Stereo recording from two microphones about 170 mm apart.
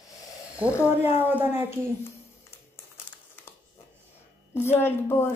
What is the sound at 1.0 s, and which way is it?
Speech, 10° right (ahead or behind).